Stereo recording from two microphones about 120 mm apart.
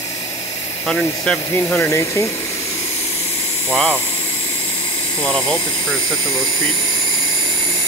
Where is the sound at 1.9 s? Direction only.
20° left (ahead or behind).